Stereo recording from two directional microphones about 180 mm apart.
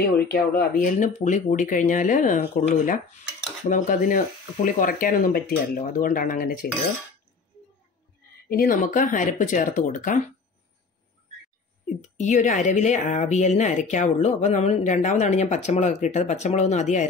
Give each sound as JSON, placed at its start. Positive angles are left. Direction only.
{"t": 0.0, "sound": "speech", "side_deg": 55}
{"t": 8.5, "sound": "speech", "side_deg": 50}
{"t": 12.0, "sound": "speech", "side_deg": 40}